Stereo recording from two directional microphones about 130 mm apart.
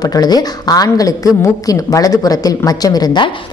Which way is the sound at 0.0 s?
30° left (ahead or behind).